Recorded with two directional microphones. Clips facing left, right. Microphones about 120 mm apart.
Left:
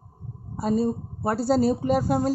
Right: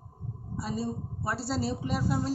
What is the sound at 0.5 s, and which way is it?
A woman's voice, 45° left (ahead or behind).